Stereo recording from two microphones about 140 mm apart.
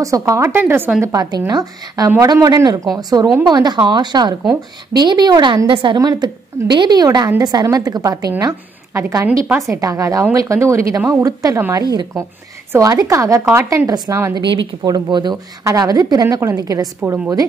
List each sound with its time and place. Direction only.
0.0 s a woman's voice: 25° right (ahead or behind)
1.0 s a woman's voice: 25° right (ahead or behind)
14.4 s a woman's voice: 35° right (ahead or behind)